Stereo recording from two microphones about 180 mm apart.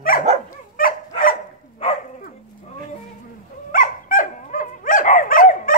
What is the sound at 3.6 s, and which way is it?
Dog, 50° left (ahead or behind).